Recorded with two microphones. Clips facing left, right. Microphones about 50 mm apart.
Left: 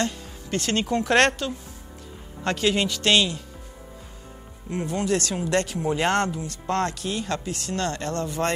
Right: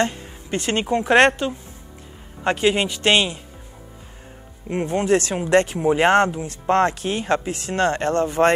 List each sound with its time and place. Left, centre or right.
0.0 s speech: right
4.6 s speech: right